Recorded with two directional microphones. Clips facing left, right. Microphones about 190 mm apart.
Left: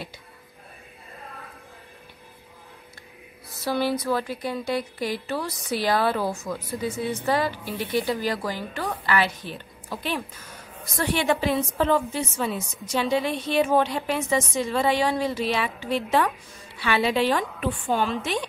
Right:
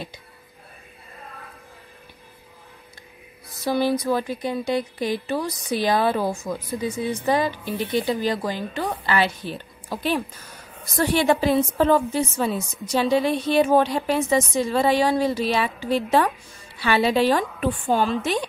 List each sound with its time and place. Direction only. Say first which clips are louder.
3.6 s a woman's voice: right 3 dB; 15° right (ahead or behind); by 18.4 s 40° right (ahead or behind)